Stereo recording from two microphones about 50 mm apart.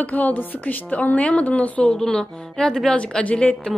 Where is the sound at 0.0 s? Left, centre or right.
Left.